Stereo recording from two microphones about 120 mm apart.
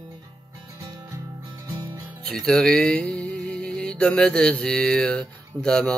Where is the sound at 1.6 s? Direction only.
35° right (ahead or behind).